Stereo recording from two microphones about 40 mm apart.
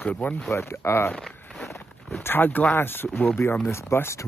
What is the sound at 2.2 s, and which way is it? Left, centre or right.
Speech, left.